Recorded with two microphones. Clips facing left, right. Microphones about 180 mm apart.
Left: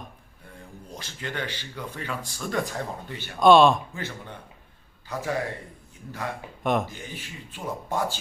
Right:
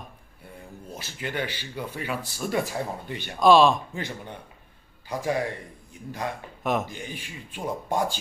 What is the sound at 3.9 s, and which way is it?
Speech, 15° right (ahead or behind).